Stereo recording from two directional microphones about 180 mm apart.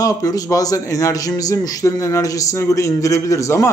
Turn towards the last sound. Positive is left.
turn(degrees=15)  # may be behind; listen again after turning